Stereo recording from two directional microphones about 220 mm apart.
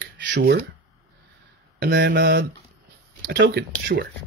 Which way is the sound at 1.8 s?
50° right (ahead or behind).